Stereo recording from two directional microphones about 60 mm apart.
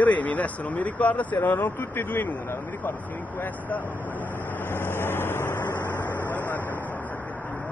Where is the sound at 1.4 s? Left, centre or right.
Left.